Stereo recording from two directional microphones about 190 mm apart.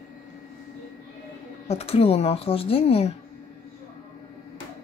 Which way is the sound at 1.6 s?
30° left (ahead or behind).